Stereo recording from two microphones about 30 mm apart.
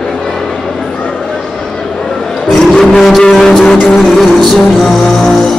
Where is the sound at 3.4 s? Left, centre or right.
Centre.